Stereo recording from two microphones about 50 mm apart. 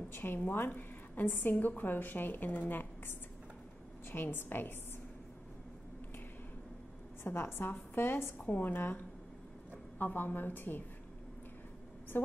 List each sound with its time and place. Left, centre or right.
0.1 s a woman's voice: left
7.2 s a woman's voice: left
8.4 s a woman's voice: left